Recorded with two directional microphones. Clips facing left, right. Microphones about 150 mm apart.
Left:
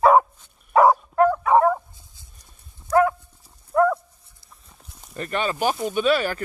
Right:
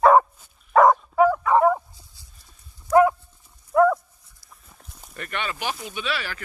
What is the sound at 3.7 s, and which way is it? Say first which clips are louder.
Dog: right 1 dB; centre (ahead or behind).